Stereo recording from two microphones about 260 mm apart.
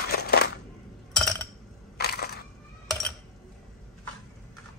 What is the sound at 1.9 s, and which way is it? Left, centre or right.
Crushing, left.